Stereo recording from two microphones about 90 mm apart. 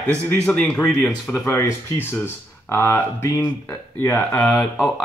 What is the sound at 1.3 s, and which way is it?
Speech, 30° left (ahead or behind).